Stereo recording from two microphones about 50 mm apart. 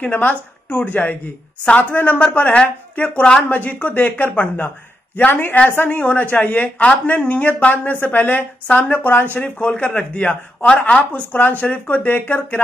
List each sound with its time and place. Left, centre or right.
0.0 s speech: left
2.5 s speech: left
3.4 s speech: left
6.8 s speech: left
9.3 s speech: left